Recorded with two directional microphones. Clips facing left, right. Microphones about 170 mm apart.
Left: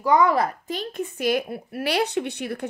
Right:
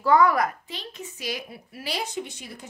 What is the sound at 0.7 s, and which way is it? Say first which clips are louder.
A woman's voice: left 9 dB; 50° left (ahead or behind).